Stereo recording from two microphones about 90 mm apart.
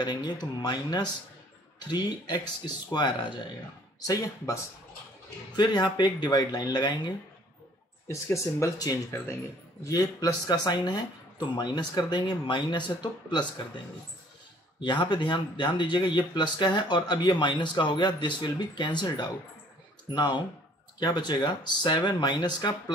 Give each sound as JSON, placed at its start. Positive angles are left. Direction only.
{"t": 0.0, "sound": "speech", "side_deg": 50}
{"t": 4.0, "sound": "speech", "side_deg": 40}
{"t": 5.6, "sound": "speech", "side_deg": 50}
{"t": 8.1, "sound": "speech", "side_deg": 40}
{"t": 14.8, "sound": "speech", "side_deg": 60}